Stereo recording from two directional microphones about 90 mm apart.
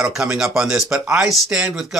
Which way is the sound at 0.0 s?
5° right (ahead or behind).